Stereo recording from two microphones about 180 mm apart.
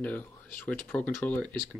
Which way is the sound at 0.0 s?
10° left (ahead or behind).